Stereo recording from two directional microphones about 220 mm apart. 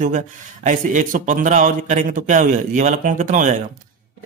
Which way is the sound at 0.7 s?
35° right (ahead or behind).